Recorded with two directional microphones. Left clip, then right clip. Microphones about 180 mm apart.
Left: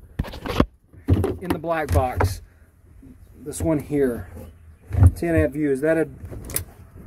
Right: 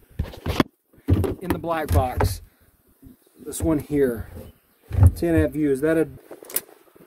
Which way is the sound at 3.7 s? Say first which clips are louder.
Even; centre (ahead or behind).